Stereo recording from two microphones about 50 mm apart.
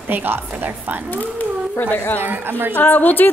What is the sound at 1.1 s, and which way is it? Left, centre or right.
Speech, left.